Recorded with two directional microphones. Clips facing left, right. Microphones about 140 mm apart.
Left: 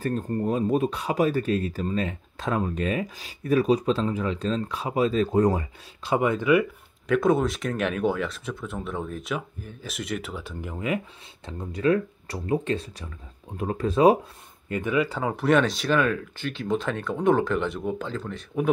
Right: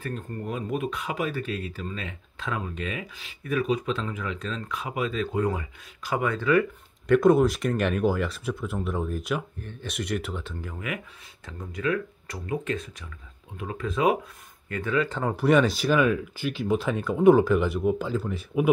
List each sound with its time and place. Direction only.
0.0 s speech: 35° left (ahead or behind); by 6.7 s 15° left (ahead or behind)
7.1 s speech: centre (ahead or behind)
10.4 s speech: 20° left (ahead or behind)
14.7 s speech: 15° left (ahead or behind); by 18.7 s 5° right (ahead or behind)